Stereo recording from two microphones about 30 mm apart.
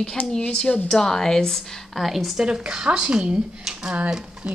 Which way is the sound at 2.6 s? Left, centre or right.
Right.